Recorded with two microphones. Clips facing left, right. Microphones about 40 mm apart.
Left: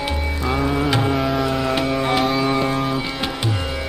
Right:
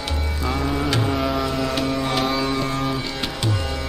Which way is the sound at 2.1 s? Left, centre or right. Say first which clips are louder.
Left 3 dB; centre.